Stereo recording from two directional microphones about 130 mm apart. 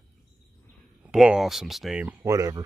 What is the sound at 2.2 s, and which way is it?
Speech, 25° right (ahead or behind).